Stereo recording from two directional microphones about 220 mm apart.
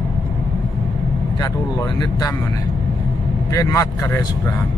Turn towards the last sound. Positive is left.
turn(degrees=15)  # may be behind; listen again after turning